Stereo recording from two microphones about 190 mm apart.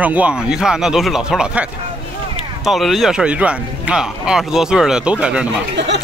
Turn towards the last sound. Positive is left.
turn(degrees=-65)  # may be behind; listen again after turning